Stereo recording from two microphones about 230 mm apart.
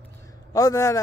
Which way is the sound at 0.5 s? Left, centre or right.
Centre.